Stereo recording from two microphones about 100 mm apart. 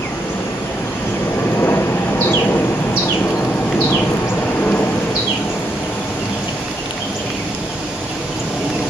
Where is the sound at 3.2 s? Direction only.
15° left (ahead or behind).